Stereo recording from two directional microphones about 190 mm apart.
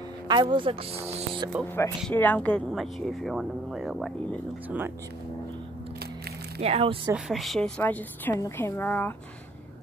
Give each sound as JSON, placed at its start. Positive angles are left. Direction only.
{"t": 0.3, "sound": "a woman's voice", "side_deg": -25}
{"t": 2.0, "sound": "speech", "side_deg": 5}
{"t": 6.6, "sound": "speech", "side_deg": -30}
{"t": 7.2, "sound": "a woman's voice", "side_deg": 0}